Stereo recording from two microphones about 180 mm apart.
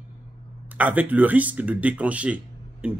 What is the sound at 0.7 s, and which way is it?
Speech, 10° right (ahead or behind).